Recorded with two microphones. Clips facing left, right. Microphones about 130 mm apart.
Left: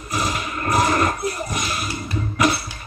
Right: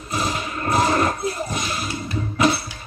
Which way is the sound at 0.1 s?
30° right (ahead or behind).